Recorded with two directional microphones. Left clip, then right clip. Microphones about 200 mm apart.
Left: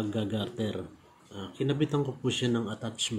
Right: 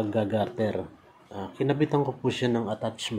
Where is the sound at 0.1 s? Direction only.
15° left (ahead or behind).